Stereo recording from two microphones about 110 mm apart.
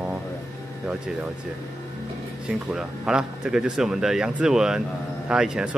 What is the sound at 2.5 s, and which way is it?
A man's voice, 5° right (ahead or behind).